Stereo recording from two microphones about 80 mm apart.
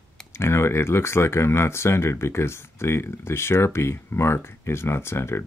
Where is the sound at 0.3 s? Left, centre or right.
Left.